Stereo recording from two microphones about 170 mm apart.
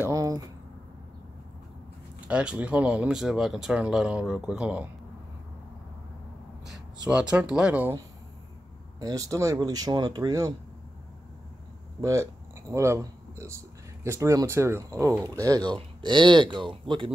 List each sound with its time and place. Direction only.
0.0 s a sound: 20° right (ahead or behind)
2.2 s speech: 5° right (ahead or behind)
7.1 s speech: 5° right (ahead or behind)
9.0 s speech: 20° right (ahead or behind)
12.0 s speech: 20° right (ahead or behind)